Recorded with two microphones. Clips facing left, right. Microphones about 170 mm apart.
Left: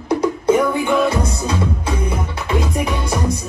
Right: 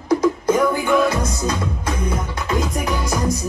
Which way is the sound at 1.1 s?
30° left (ahead or behind).